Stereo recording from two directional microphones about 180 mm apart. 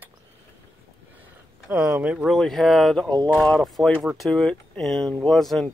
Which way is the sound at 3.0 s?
25° right (ahead or behind).